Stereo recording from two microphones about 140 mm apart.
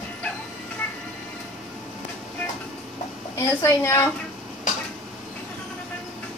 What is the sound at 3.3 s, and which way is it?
Speech, 20° left (ahead or behind).